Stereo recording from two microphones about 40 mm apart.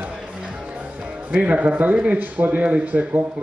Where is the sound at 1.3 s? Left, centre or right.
Right.